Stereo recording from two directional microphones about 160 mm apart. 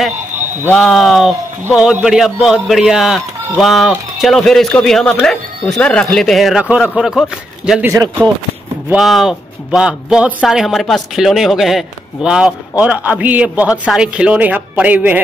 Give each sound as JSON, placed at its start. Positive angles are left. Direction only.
{"t": 0.7, "sound": "a man's voice", "side_deg": 0}
{"t": 7.8, "sound": "speech", "side_deg": -20}
{"t": 8.8, "sound": "a man's voice", "side_deg": 0}